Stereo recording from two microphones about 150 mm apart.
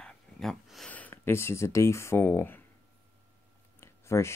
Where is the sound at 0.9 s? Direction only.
10° left (ahead or behind).